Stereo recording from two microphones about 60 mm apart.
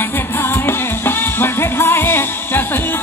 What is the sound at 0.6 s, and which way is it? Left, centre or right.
Music, left.